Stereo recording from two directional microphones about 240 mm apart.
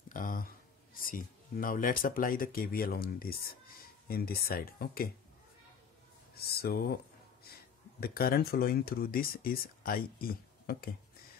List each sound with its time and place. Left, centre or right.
0.1 s speech: left
6.3 s speech: left
8.0 s speech: left